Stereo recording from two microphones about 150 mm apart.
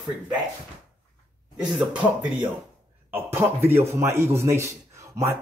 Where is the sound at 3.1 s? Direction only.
15° right (ahead or behind).